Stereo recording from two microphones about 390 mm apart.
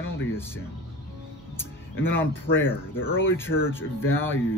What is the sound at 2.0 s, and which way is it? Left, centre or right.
Speech, centre.